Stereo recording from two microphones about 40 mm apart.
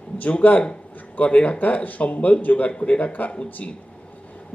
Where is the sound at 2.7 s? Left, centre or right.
Left.